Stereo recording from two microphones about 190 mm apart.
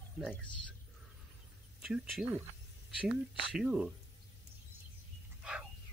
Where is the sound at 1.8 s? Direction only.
Centre (ahead or behind).